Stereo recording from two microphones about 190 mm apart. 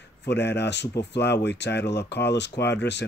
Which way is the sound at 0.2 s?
65° left (ahead or behind).